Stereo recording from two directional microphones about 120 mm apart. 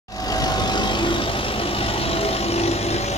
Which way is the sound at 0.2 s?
30° left (ahead or behind).